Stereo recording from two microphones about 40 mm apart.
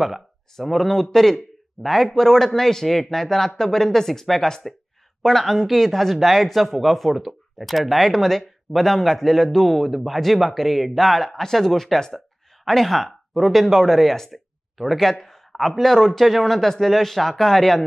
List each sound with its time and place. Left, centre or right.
0.7 s a man's voice: centre